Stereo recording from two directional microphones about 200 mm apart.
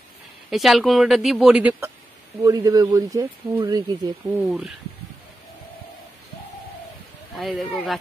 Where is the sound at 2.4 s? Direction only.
20° right (ahead or behind).